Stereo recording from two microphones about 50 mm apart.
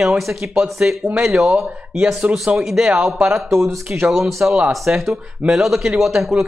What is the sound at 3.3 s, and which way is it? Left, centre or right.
Speech, right.